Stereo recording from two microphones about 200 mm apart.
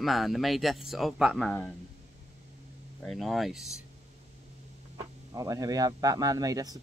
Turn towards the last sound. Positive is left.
turn(degrees=-20)  # may be behind; listen again after turning